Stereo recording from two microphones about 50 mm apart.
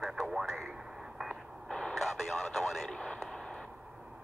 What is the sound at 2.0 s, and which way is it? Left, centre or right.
Radio, centre.